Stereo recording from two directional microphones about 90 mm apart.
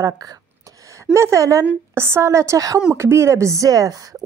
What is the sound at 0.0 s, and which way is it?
Speech, 45° right (ahead or behind).